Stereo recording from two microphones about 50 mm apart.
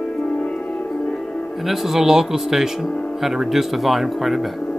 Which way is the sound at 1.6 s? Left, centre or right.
Centre.